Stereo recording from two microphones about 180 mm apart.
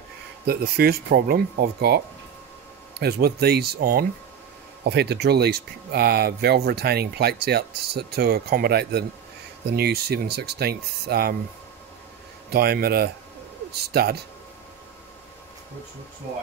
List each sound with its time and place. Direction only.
0.5 s speech: 60° right (ahead or behind)
3.0 s speech: 60° right (ahead or behind)
12.4 s speech: 60° right (ahead or behind)